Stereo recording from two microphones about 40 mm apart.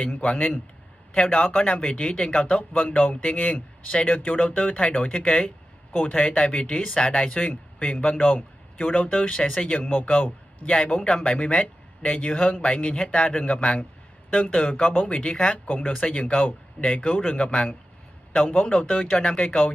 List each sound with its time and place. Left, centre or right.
0.0 s speech: left
2.8 s speech: left
9.8 s speech: left
10.6 s speech: left
17.4 s speech: left
18.4 s speech: left